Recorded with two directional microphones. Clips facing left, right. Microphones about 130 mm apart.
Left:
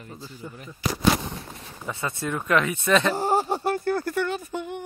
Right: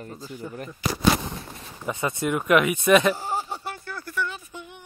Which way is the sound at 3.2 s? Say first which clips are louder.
Left 7 dB; 50° left (ahead or behind).